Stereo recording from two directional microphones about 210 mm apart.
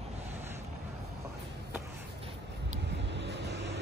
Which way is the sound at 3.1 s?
55° right (ahead or behind).